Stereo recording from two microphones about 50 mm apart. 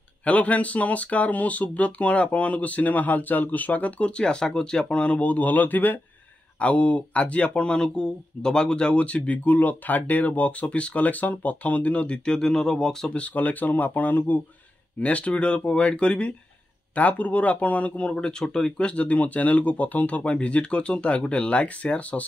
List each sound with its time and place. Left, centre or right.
0.2 s speech: left
6.6 s speech: left
12.3 s speech: centre
13.1 s speech: left
15.0 s speech: left
18.1 s speech: centre